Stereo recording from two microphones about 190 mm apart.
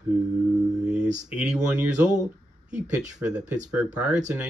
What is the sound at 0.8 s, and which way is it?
Speech, 5° right (ahead or behind).